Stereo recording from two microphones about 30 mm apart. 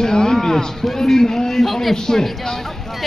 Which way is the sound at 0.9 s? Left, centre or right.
Centre.